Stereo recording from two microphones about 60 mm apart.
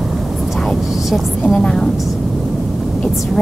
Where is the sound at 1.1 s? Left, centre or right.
Centre.